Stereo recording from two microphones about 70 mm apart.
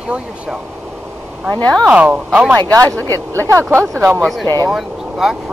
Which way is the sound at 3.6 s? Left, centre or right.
Right.